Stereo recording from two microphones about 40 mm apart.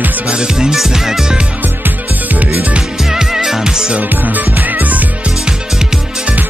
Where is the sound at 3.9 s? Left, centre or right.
Right.